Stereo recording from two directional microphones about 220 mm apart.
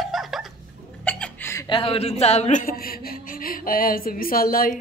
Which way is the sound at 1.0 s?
10° left (ahead or behind).